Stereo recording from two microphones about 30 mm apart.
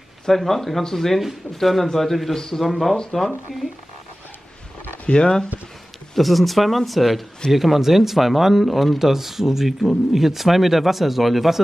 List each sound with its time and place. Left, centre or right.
0.3 s speech: centre
2.3 s speech: centre
3.1 s speech: centre
5.0 s speech: left
6.1 s speech: centre